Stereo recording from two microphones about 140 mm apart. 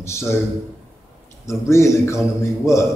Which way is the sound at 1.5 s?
20° left (ahead or behind).